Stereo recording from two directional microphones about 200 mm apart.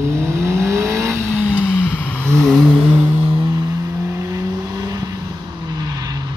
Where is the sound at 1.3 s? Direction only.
Centre (ahead or behind).